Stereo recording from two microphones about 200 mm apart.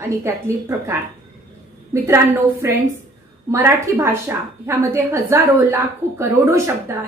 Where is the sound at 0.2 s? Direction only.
10° right (ahead or behind).